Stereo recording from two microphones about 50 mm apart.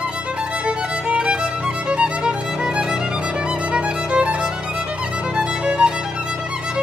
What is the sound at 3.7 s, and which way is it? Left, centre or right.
Music, right.